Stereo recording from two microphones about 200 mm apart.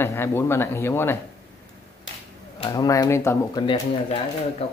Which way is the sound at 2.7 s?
20° left (ahead or behind).